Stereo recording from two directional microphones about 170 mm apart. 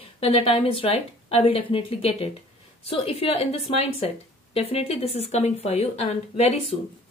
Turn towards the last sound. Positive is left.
turn(degrees=40)  # may be behind; listen again after turning